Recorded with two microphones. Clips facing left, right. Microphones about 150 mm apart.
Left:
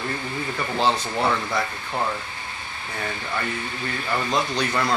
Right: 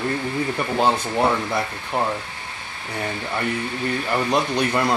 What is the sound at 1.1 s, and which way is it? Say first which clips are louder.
Speech: right 3 dB; 20° right (ahead or behind).